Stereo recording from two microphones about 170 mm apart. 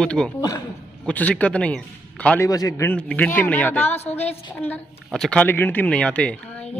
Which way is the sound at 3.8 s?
40° left (ahead or behind).